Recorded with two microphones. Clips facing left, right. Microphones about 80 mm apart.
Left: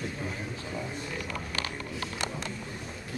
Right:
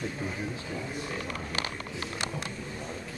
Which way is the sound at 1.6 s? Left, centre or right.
Centre.